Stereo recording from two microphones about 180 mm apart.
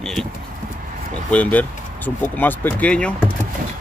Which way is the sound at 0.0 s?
Centre (ahead or behind).